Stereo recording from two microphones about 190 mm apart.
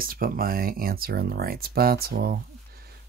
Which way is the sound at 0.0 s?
50° right (ahead or behind).